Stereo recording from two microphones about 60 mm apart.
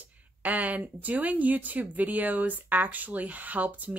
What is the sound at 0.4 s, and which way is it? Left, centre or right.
Speech, right.